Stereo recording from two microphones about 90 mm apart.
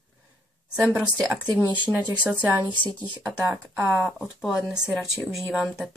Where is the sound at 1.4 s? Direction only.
50° right (ahead or behind).